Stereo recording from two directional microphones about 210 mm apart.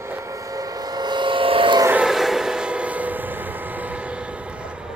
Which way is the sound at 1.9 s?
5° right (ahead or behind).